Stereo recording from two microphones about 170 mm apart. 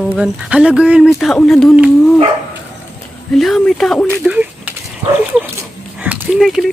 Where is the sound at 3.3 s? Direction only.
Centre (ahead or behind).